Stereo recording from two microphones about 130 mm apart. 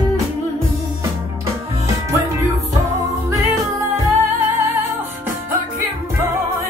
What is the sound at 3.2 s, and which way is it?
Music, 25° right (ahead or behind).